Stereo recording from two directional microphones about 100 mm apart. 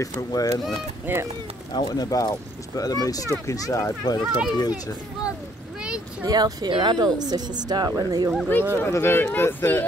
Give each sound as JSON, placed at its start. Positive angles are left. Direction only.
{"t": 0.0, "sound": "speech", "side_deg": 40}
{"t": 1.1, "sound": "speech", "side_deg": -20}
{"t": 1.7, "sound": "speech", "side_deg": 40}
{"t": 4.2, "sound": "speech", "side_deg": -5}
{"t": 4.6, "sound": "a child's voice", "side_deg": 40}
{"t": 6.2, "sound": "speech", "side_deg": -45}
{"t": 8.7, "sound": "speech", "side_deg": 25}